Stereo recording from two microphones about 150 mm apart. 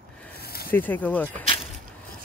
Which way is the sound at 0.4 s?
90° left.